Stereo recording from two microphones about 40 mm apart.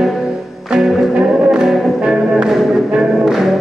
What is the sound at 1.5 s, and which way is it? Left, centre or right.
Music, centre.